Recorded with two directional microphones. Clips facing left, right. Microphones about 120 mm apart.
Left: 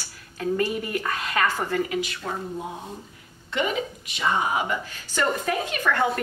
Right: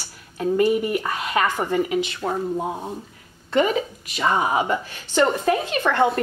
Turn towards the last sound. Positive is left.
turn(degrees=-25)  # may be behind; listen again after turning